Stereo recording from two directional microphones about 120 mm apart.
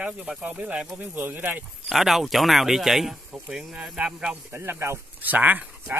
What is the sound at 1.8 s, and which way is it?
Speech, centre (ahead or behind).